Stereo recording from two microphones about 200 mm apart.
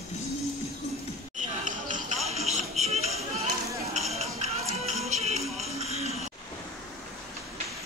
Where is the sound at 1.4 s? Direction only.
40° right (ahead or behind).